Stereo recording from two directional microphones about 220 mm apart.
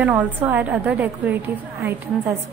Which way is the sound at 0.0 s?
5° right (ahead or behind).